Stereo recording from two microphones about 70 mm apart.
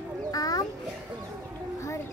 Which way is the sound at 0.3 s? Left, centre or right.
Left.